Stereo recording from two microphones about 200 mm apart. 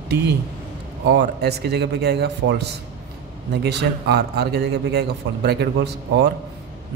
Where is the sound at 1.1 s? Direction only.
55° right (ahead or behind).